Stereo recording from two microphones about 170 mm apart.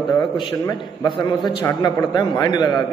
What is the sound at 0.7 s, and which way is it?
A man's voice, 25° left (ahead or behind).